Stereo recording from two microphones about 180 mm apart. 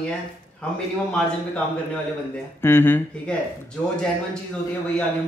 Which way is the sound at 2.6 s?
10° left (ahead or behind).